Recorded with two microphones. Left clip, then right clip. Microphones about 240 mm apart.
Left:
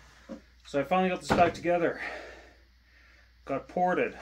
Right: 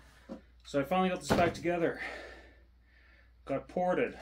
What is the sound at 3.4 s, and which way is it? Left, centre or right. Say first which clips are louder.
Speech: left 4 dB; centre.